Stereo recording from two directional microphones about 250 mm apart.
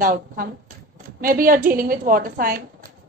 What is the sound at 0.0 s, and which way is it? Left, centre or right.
A woman's voice, right.